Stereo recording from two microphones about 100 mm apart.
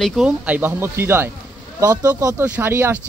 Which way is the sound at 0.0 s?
Centre (ahead or behind).